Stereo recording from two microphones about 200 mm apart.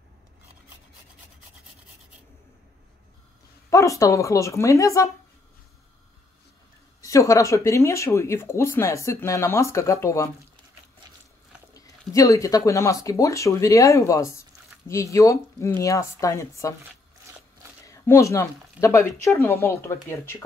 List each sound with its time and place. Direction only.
3.7 s speech: 15° left (ahead or behind)
7.0 s speech: 15° left (ahead or behind)
12.1 s speech: 15° left (ahead or behind)
17.8 s speech: 15° left (ahead or behind)